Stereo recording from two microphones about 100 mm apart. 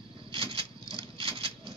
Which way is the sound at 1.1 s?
65° right (ahead or behind).